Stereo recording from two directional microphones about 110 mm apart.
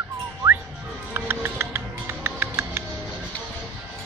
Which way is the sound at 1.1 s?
20° right (ahead or behind).